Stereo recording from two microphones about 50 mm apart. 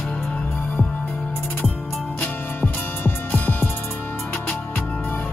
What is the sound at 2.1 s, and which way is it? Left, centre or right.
Music, left.